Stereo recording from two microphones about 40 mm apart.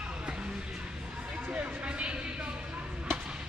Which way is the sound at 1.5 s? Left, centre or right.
Right.